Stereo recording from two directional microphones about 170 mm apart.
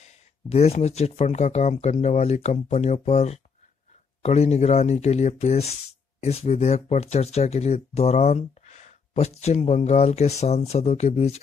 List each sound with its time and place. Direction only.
0.5 s speech: 40° left (ahead or behind)